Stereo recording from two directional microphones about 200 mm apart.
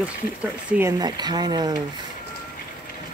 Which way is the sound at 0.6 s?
10° right (ahead or behind).